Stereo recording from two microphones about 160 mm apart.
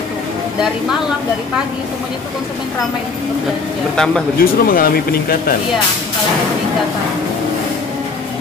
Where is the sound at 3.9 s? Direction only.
5° left (ahead or behind).